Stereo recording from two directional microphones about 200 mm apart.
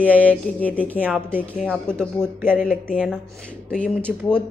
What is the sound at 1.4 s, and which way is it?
Speech, 5° left (ahead or behind).